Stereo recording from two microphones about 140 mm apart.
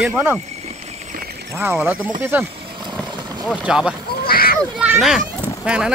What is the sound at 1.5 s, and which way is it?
Speech, 15° right (ahead or behind).